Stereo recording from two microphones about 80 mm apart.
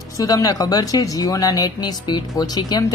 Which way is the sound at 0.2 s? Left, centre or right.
Left.